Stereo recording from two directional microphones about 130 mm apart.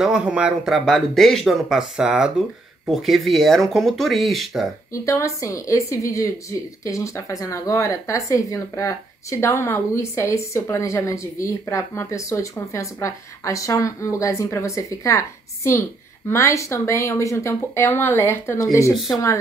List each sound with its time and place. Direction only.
0.0 s speech: 5° right (ahead or behind)
5.0 s speech: 25° left (ahead or behind)